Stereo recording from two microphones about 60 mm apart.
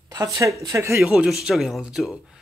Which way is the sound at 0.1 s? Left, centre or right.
Right.